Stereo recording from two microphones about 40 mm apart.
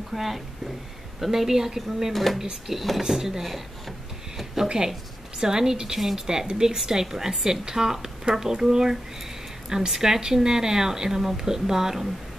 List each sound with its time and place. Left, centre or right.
0.1 s a woman's voice: centre
4.6 s speech: centre